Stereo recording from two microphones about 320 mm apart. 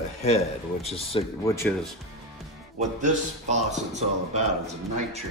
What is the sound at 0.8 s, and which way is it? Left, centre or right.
Speech, centre.